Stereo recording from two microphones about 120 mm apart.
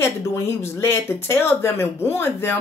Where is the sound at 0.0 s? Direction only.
20° left (ahead or behind).